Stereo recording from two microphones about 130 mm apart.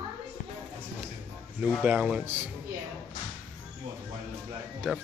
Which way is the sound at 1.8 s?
10° right (ahead or behind).